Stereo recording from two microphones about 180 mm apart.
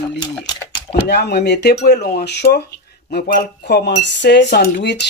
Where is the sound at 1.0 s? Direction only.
65° left (ahead or behind).